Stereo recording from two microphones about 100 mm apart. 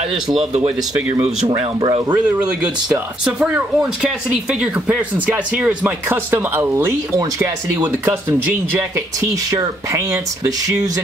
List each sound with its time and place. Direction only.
0.1 s speech: 5° right (ahead or behind)
1.5 s speech: 40° right (ahead or behind)
2.1 s speech: 15° right (ahead or behind)
8.7 s speech: 30° right (ahead or behind)